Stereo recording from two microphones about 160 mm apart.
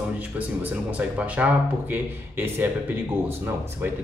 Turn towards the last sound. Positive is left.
turn(degrees=-10)  # may be behind; listen again after turning